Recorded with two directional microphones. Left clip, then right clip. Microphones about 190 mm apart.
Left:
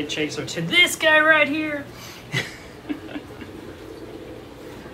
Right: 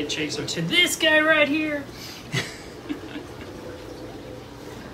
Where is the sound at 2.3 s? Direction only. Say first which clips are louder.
Left 2 dB; 5° right (ahead or behind).